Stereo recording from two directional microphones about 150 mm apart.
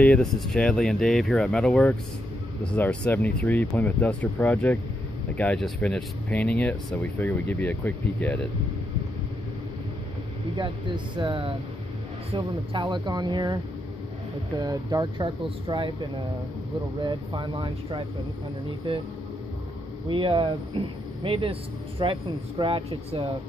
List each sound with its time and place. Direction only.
0.0 s speech: 5° left (ahead or behind)
11.1 s speech: 30° right (ahead or behind)
14.6 s speech: 25° right (ahead or behind)
17.0 s speech: 30° right (ahead or behind)
20.1 s speech: 35° right (ahead or behind)